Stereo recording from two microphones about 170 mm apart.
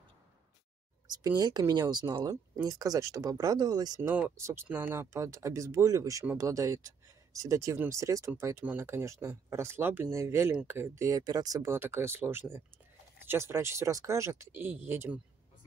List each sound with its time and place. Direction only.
1.0 s speech: 20° right (ahead or behind)
4.1 s speech: 10° right (ahead or behind)